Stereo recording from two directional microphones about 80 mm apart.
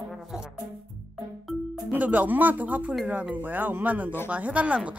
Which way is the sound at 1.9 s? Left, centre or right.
Centre.